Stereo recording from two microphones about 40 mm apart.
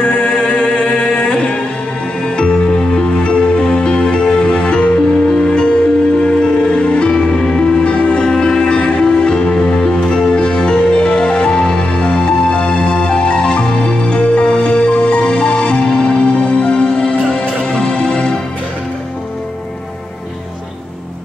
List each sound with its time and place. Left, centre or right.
0.0 s music: left
2.2 s music: left